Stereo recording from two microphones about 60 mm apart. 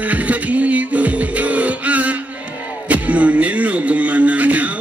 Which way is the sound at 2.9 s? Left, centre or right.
Right.